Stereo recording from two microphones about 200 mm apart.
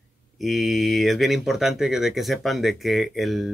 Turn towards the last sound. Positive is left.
turn(degrees=0)  # may be behind; listen again after turning